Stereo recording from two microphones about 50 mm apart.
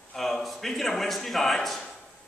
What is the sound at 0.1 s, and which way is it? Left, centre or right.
A man's voice, centre.